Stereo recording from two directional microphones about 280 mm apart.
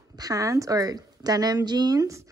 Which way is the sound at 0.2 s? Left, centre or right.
Centre.